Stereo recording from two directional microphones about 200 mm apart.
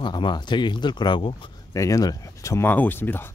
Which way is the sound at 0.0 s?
25° left (ahead or behind).